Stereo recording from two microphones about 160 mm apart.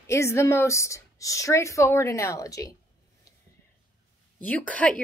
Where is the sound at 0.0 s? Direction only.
20° left (ahead or behind).